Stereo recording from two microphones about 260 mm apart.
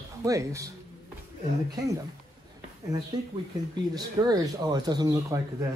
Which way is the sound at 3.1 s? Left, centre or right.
Centre.